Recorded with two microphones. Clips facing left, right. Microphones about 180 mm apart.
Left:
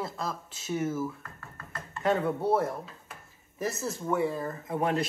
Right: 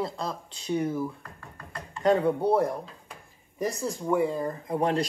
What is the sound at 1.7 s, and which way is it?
Chopping, 5° left (ahead or behind).